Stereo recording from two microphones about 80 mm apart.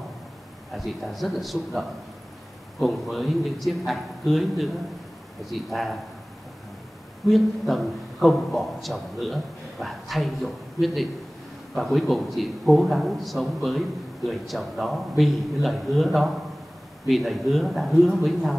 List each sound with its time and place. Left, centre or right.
0.7 s a man's voice: centre
7.2 s a man's voice: centre